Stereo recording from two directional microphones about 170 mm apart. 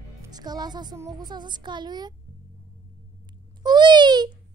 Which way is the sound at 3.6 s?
25° right (ahead or behind).